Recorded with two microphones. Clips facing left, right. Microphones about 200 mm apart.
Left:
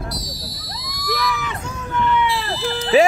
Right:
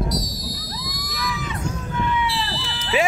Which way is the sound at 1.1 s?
75° left (ahead or behind).